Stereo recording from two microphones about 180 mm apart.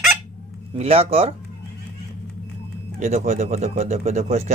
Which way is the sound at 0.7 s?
35° right (ahead or behind).